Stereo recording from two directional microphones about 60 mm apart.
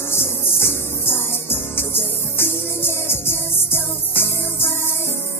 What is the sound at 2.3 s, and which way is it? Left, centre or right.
Music, left.